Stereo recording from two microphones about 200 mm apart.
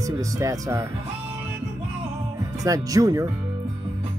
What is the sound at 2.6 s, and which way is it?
Speech, 15° right (ahead or behind).